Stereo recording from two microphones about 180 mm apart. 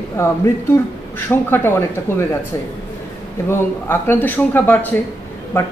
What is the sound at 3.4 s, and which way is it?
A man's voice, 15° left (ahead or behind).